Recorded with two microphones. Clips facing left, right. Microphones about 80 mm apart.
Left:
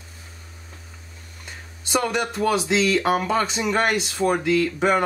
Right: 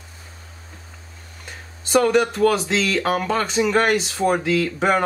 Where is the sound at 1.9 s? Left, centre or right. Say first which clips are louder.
Right 6 dB; centre.